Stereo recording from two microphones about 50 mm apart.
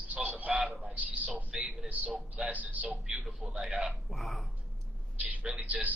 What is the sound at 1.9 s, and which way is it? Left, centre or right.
Speech, right.